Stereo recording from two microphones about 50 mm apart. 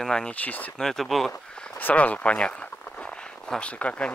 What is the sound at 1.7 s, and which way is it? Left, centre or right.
Speech, left.